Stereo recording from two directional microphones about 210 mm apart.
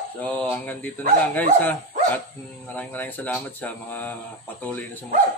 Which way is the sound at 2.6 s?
10° left (ahead or behind).